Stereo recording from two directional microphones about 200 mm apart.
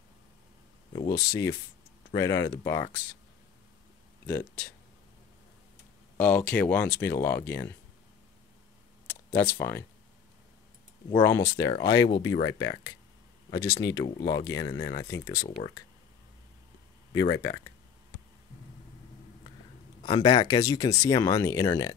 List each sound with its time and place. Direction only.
0.9 s speech: 20° left (ahead or behind)
4.3 s speech: 10° left (ahead or behind)
6.1 s speech: 5° left (ahead or behind)
9.1 s speech: 10° left (ahead or behind)
11.1 s speech: 20° left (ahead or behind)
20.0 s speech: 20° left (ahead or behind)